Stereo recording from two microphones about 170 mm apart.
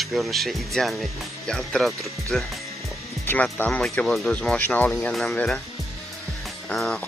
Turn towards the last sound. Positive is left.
turn(degrees=5)  # may be behind; listen again after turning